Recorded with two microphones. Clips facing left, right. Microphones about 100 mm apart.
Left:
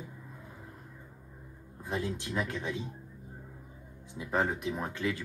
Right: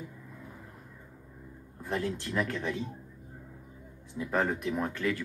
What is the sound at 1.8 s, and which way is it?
Speech, 20° left (ahead or behind).